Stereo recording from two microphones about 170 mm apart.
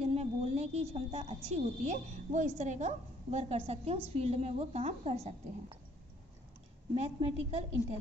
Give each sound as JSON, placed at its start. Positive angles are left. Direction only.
{"t": 0.0, "sound": "a woman's voice", "side_deg": -40}
{"t": 7.2, "sound": "a woman's voice", "side_deg": -35}